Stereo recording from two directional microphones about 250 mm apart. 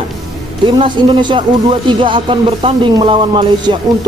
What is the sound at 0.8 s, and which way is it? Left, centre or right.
Speech, centre.